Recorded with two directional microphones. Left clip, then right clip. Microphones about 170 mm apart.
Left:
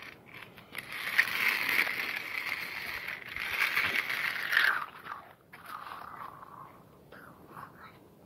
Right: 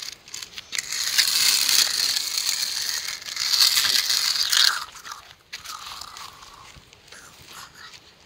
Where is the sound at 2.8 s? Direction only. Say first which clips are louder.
Right 9 dB; 30° left (ahead or behind).